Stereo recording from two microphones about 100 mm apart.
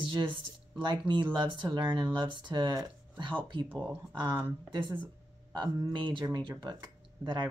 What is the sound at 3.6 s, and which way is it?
Speech, 10° right (ahead or behind).